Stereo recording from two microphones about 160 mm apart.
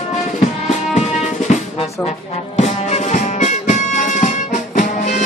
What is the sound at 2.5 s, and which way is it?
Music, 45° left (ahead or behind).